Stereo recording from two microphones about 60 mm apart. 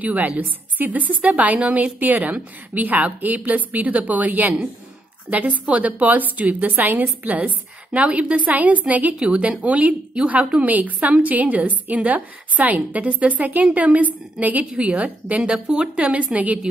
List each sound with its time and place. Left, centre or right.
0.0 s a woman's voice: right